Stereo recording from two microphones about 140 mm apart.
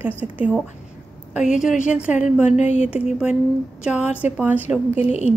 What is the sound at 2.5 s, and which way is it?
Speech, 55° left (ahead or behind).